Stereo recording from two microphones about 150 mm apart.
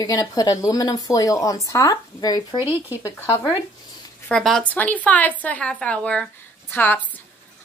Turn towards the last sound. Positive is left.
turn(degrees=10)  # may be behind; listen again after turning